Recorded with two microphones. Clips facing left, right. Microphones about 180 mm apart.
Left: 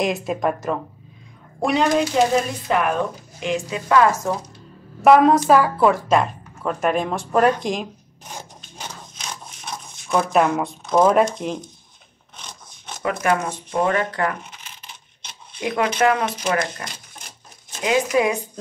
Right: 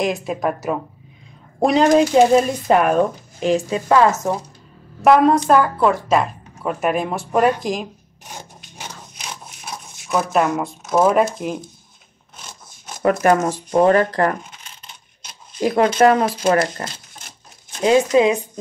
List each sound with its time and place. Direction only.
0.0 s speech: centre (ahead or behind)
1.6 s speech: 35° right (ahead or behind); by 4.4 s 20° right (ahead or behind)
5.0 s a woman's voice: centre (ahead or behind)
12.4 s filing: centre (ahead or behind)
13.0 s speech: 40° right (ahead or behind)
15.6 s speech: 35° right (ahead or behind)
18.1 s speech: 20° right (ahead or behind)